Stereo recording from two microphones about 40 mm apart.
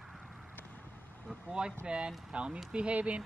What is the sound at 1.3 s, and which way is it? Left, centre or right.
Speech, right.